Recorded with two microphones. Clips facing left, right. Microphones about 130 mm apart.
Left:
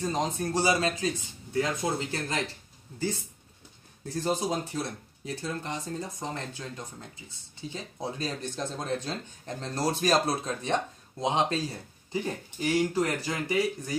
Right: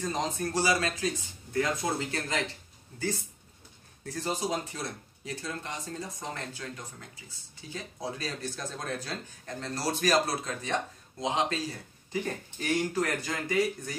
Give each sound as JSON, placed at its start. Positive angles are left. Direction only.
{"t": 0.0, "sound": "speech", "side_deg": 25}
{"t": 4.0, "sound": "speech", "side_deg": 25}
{"t": 12.3, "sound": "speech", "side_deg": 10}